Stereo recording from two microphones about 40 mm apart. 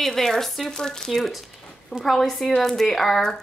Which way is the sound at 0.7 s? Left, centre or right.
Centre.